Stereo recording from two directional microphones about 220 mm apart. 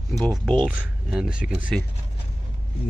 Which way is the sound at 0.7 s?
5° right (ahead or behind).